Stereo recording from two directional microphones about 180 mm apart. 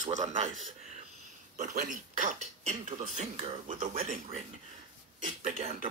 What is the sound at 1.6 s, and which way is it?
Speech, 45° right (ahead or behind).